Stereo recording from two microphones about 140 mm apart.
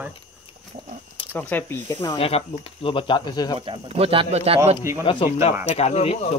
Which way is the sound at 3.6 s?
45° right (ahead or behind).